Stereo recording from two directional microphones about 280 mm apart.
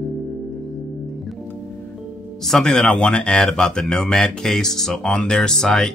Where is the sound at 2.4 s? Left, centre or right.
Centre.